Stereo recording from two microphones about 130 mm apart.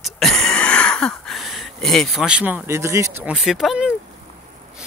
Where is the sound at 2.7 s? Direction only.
20° right (ahead or behind).